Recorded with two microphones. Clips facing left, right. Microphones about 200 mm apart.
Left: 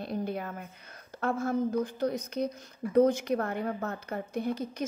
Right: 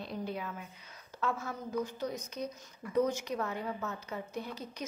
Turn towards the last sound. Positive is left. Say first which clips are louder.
# left 8 dB
turn(degrees=50)  # may be behind; listen again after turning